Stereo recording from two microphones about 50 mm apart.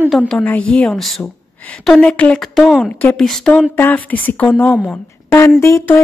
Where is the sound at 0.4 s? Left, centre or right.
Left.